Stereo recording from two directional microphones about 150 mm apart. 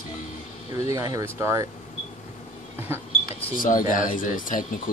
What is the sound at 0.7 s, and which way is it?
Speech, 25° right (ahead or behind).